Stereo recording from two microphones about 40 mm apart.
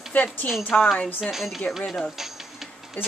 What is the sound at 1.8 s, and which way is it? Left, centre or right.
Speech, left.